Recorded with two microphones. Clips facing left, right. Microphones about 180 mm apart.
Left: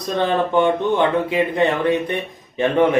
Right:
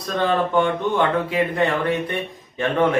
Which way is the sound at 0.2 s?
20° left (ahead or behind).